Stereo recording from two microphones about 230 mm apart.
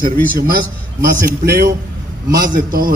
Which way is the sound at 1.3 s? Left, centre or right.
Right.